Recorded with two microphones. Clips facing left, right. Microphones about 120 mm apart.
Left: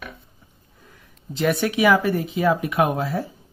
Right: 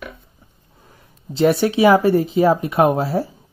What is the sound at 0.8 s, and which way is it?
Speech, 30° right (ahead or behind).